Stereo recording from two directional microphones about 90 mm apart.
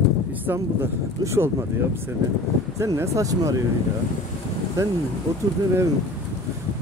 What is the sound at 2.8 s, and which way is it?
Speech, 35° right (ahead or behind).